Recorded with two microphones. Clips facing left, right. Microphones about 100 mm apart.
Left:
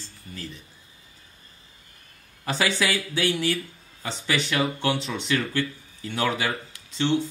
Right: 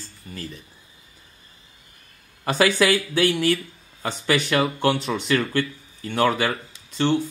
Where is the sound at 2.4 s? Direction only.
55° right (ahead or behind).